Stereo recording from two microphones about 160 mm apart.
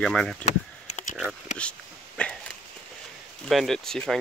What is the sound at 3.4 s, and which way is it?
Speech, centre (ahead or behind).